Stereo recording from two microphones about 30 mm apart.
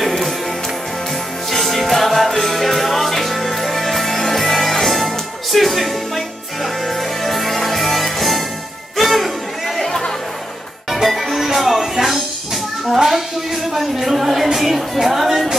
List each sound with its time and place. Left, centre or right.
1.5 s music: centre
9.8 s chatter: centre
10.9 s music: centre
12.9 s a sound: centre
13.9 s music: centre